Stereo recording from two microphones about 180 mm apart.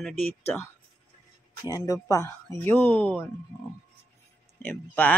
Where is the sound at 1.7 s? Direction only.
20° left (ahead or behind).